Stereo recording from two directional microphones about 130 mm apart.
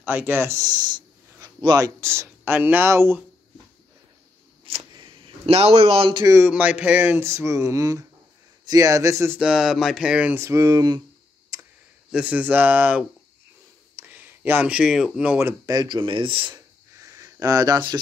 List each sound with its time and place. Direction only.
0.0 s speech: 15° right (ahead or behind)
4.9 s a sound: 40° right (ahead or behind)
6.2 s music: 20° right (ahead or behind)
6.5 s music: 10° right (ahead or behind)
9.4 s speech: 5° right (ahead or behind)
10.3 s music: 25° right (ahead or behind)
11.5 s tick: 30° right (ahead or behind)
12.1 s speech: 10° right (ahead or behind)
14.0 s speech: 15° right (ahead or behind)
15.3 s speech: 25° right (ahead or behind); by 16.6 s 40° right (ahead or behind)
16.9 s a sound: 25° right (ahead or behind)